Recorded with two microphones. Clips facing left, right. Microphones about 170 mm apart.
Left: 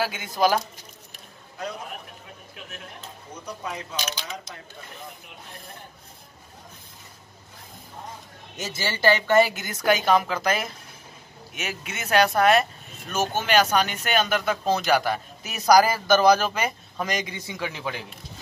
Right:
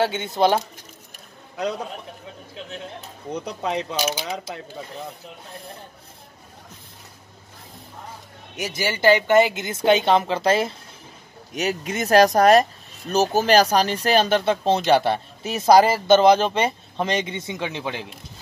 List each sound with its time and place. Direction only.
0.0 s speech: 25° right (ahead or behind)
3.3 s speech: 70° right (ahead or behind)
8.5 s speech: 15° right (ahead or behind)